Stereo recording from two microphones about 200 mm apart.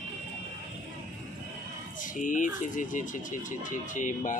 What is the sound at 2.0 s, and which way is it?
Speech, 40° left (ahead or behind).